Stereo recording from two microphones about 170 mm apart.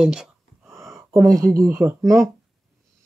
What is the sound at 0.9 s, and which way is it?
Speech, 20° right (ahead or behind).